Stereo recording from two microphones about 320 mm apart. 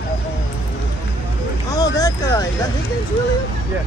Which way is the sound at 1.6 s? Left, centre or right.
Centre.